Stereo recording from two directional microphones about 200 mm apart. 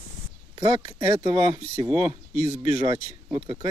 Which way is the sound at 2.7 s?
25° right (ahead or behind).